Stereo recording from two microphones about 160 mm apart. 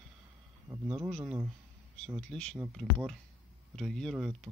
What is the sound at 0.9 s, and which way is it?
Speech, centre (ahead or behind).